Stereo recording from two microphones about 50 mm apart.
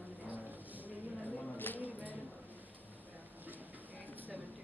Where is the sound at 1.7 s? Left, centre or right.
Right.